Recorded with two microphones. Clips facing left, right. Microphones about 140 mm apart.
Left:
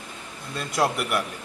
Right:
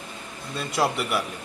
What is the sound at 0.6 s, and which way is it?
Speech, centre (ahead or behind).